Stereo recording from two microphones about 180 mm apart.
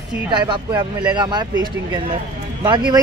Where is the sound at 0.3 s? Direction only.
25° right (ahead or behind).